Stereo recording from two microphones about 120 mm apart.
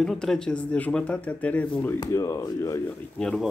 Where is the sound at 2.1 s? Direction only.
25° left (ahead or behind).